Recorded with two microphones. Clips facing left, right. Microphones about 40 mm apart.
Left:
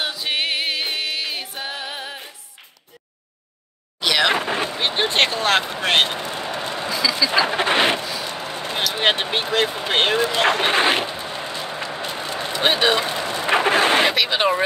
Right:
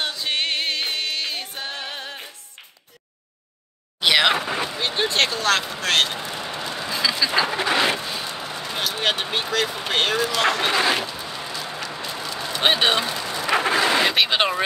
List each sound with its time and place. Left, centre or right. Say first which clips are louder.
0.0 s music: left 1 dB; centre
4.0 s a sound: right 1 dB; centre
4.4 s boat: left 2 dB; left
4.7 s speech: left 2 dB; left
6.9 s vehicle: left 1 dB; right
7.5 s a sound: left 2 dB; left
8.2 s vehicle: left 2 dB; left
8.9 s speech: left 4 dB; left
12.0 s a sound: left 3 dB; left
13.0 s vehicle: left 3 dB; left
13.5 s zipper: left 3 dB; left